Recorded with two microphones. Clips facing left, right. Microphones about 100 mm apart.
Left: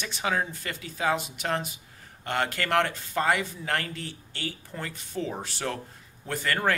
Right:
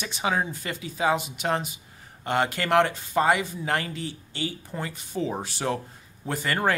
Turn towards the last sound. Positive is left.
turn(degrees=-15)  # may be behind; listen again after turning